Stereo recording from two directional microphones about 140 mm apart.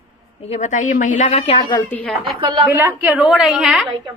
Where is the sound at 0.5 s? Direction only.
60° left (ahead or behind).